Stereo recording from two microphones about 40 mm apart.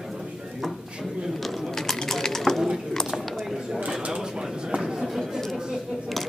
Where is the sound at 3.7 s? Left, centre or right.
Right.